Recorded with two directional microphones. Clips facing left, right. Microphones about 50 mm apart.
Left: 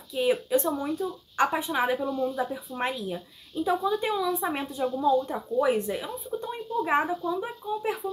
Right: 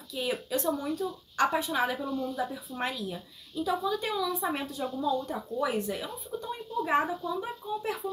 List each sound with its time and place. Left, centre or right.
0.1 s speech: left